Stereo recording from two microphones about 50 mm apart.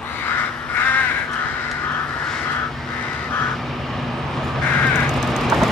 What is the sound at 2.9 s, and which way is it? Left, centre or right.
Duck, left.